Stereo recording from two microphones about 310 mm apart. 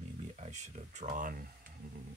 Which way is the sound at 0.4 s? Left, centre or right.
Right.